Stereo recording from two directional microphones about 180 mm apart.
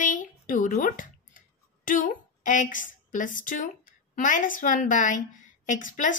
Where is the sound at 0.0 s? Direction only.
45° left (ahead or behind).